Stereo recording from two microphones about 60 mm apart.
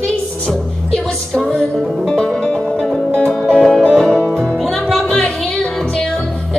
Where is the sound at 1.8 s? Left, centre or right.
Centre.